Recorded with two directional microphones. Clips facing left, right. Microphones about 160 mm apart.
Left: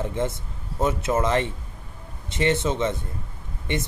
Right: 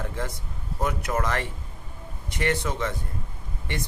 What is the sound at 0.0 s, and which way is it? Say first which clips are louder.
Speech: left 6 dB; 20° left (ahead or behind).